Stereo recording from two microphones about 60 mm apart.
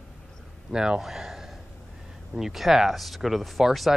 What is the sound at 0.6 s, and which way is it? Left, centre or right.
Speech, centre.